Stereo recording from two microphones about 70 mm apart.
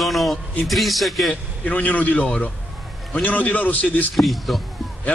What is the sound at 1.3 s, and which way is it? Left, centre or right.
A man's voice, left.